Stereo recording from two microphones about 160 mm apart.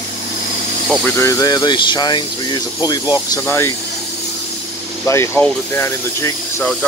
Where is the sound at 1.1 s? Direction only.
20° left (ahead or behind).